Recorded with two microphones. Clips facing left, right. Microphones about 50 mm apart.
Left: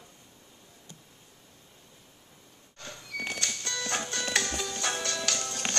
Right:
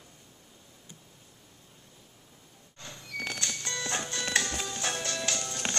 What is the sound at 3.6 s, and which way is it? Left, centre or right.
Music, centre.